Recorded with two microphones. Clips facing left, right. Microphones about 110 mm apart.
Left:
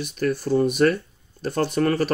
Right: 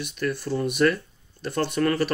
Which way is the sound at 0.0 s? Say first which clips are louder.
Left 4 dB; 40° left (ahead or behind).